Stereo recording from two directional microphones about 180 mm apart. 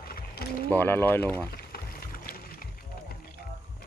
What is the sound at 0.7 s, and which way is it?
Speech, 10° left (ahead or behind).